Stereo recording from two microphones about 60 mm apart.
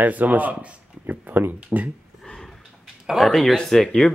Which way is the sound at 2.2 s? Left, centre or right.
Centre.